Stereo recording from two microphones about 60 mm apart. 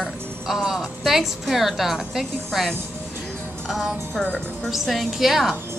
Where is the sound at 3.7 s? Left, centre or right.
Centre.